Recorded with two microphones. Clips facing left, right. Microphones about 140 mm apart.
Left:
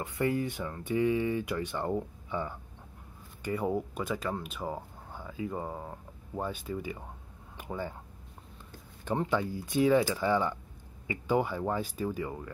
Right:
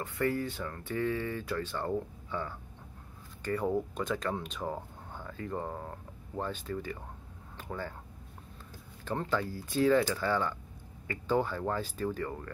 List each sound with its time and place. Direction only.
0.0 s speech: 15° left (ahead or behind)
9.0 s speech: 15° left (ahead or behind)